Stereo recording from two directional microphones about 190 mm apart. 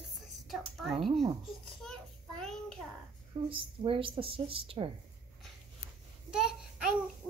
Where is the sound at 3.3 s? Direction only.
25° right (ahead or behind).